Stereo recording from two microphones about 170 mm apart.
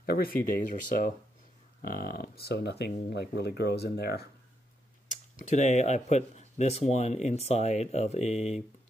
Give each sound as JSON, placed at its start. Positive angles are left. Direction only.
{"t": 0.0, "sound": "speech", "side_deg": 60}
{"t": 1.8, "sound": "speech", "side_deg": 60}
{"t": 5.3, "sound": "speech", "side_deg": 45}